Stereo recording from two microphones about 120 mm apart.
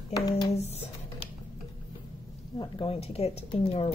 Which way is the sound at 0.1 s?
35° left (ahead or behind).